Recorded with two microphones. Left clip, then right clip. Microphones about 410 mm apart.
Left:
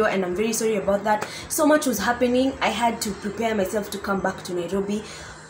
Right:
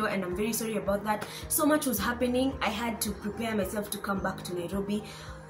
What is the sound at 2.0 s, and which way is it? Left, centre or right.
Speech, right.